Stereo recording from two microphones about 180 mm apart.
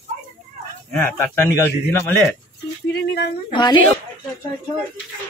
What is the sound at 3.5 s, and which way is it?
Speech, 25° left (ahead or behind).